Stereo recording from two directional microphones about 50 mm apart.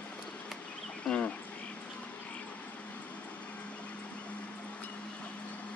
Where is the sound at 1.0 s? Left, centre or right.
Left.